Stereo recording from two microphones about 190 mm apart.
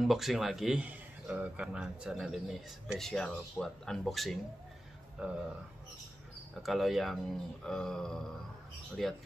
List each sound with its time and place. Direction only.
0.0 s a man's voice: centre (ahead or behind)
6.6 s a man's voice: centre (ahead or behind)